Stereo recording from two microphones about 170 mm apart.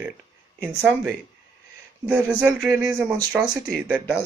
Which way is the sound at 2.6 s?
5° right (ahead or behind).